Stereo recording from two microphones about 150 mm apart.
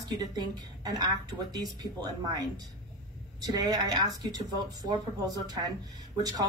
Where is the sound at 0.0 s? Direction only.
25° right (ahead or behind).